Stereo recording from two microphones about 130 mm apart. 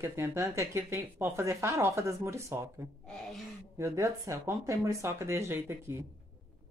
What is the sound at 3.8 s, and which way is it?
Speech, 25° right (ahead or behind).